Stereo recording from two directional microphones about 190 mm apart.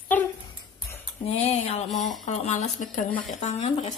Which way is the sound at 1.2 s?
35° left (ahead or behind).